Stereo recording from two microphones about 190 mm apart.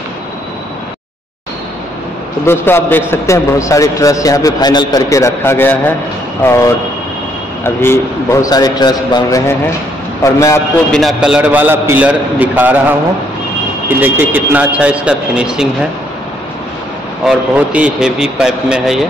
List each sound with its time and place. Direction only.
2.4 s a man's voice: 10° left (ahead or behind)
10.9 s speech: centre (ahead or behind)
13.8 s speech: 10° right (ahead or behind)
17.2 s speech: 5° right (ahead or behind)